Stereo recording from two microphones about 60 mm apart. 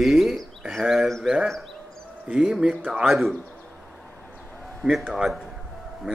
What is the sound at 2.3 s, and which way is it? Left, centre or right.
Speech, centre.